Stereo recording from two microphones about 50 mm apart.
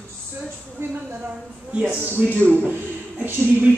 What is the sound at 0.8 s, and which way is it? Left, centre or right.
Speech, right.